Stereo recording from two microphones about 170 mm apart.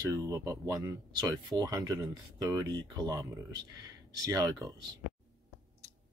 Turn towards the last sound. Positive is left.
turn(degrees=-20)  # may be behind; listen again after turning